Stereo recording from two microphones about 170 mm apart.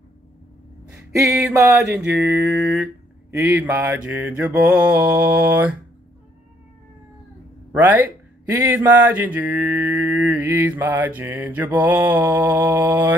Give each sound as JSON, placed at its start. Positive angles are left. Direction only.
{"t": 1.1, "sound": "speech", "side_deg": -15}
{"t": 2.0, "sound": "a sound", "side_deg": -5}
{"t": 3.3, "sound": "speech", "side_deg": -15}
{"t": 7.7, "sound": "speech", "side_deg": -10}